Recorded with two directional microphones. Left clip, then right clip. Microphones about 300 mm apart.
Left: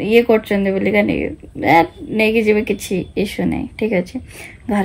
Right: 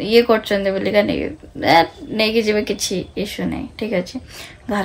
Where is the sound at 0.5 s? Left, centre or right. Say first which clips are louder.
Even; right.